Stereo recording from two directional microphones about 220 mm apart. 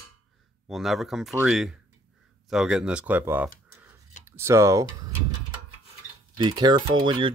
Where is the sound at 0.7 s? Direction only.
Centre (ahead or behind).